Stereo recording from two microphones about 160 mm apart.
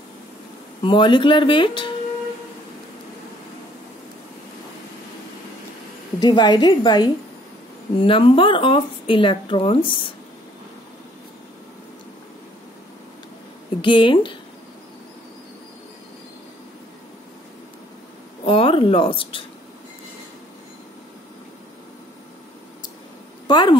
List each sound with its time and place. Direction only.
0.8 s speech: 30° left (ahead or behind)
6.1 s a woman's voice: 25° left (ahead or behind)
13.7 s speech: 30° left (ahead or behind)
18.4 s speech: 35° left (ahead or behind)
23.4 s a woman's voice: 25° left (ahead or behind)